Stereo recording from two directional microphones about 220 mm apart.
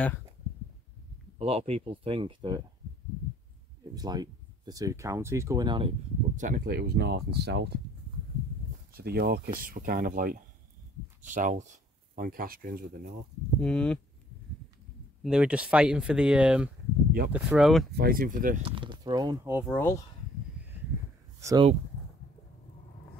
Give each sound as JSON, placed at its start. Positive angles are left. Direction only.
{"t": 1.4, "sound": "speech", "side_deg": -25}
{"t": 3.9, "sound": "speech", "side_deg": -20}
{"t": 8.9, "sound": "speech", "side_deg": -45}
{"t": 13.6, "sound": "speech", "side_deg": 5}
{"t": 15.2, "sound": "speech", "side_deg": -5}
{"t": 17.9, "sound": "speech", "side_deg": -45}
{"t": 18.6, "sound": "speech", "side_deg": -20}
{"t": 19.7, "sound": "speech", "side_deg": 10}
{"t": 20.6, "sound": "a sound", "side_deg": -5}
{"t": 21.4, "sound": "speech", "side_deg": -15}